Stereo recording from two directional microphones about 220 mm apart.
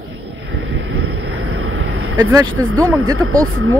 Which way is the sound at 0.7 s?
70° right (ahead or behind).